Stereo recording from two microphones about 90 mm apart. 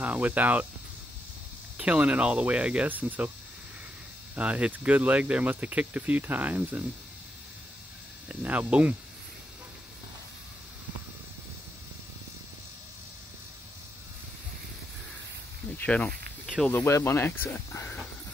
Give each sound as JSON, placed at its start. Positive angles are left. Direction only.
{"t": 0.0, "sound": "speech", "side_deg": -15}
{"t": 1.8, "sound": "speech", "side_deg": -10}
{"t": 4.4, "sound": "speech", "side_deg": -10}
{"t": 8.3, "sound": "speech", "side_deg": -15}
{"t": 15.8, "sound": "speech", "side_deg": 15}
{"t": 16.8, "sound": "speech", "side_deg": 25}